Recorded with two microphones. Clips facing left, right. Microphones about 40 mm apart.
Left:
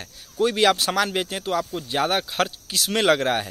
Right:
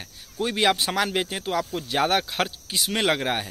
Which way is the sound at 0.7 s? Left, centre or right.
Right.